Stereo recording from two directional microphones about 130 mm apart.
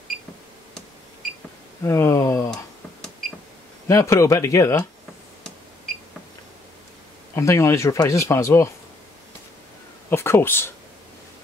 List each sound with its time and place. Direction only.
1.8 s speech: 20° left (ahead or behind)
3.8 s speech: 20° left (ahead or behind)
7.3 s speech: 20° left (ahead or behind)
10.0 s speech: 20° left (ahead or behind)